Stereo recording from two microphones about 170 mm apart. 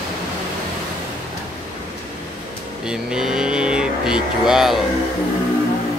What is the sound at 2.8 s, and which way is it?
Vehicle, 5° right (ahead or behind).